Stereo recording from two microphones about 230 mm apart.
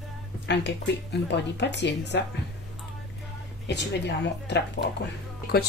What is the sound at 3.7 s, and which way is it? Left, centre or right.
Speech, left.